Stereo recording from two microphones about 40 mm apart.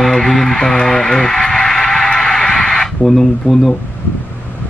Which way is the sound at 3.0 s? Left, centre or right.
Centre.